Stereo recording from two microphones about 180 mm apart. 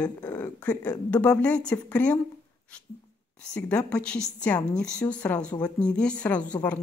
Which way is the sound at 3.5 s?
5° left (ahead or behind).